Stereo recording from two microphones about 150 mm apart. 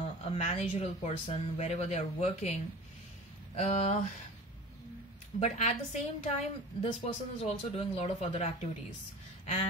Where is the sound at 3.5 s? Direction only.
50° left (ahead or behind).